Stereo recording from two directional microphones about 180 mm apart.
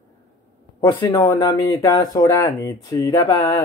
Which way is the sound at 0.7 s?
20° left (ahead or behind).